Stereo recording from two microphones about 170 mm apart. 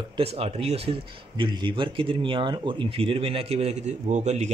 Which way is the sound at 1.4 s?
25° right (ahead or behind).